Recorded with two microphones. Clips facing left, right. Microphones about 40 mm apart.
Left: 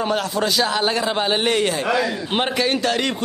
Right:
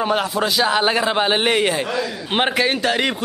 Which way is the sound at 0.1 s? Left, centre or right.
Centre.